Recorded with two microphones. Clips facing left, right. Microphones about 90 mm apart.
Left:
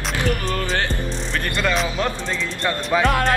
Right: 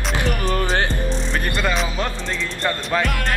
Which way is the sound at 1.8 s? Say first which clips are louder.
Left 1 dB; centre (ahead or behind).